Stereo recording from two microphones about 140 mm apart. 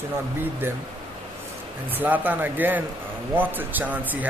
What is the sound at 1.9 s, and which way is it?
Speech, 10° right (ahead or behind).